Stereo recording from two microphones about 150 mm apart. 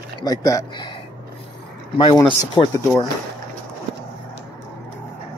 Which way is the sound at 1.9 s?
30° left (ahead or behind).